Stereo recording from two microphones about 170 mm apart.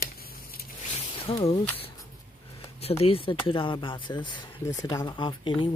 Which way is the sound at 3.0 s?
30° left (ahead or behind).